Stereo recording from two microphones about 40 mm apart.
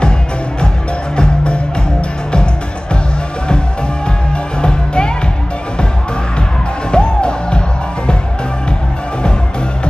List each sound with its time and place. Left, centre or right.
1.1 s music: left
4.6 s music: left
6.9 s music: left